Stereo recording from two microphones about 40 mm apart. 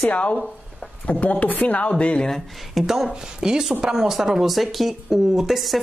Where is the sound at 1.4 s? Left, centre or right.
Left.